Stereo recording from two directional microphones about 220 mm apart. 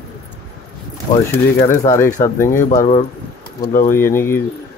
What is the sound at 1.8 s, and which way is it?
Speech, 15° left (ahead or behind).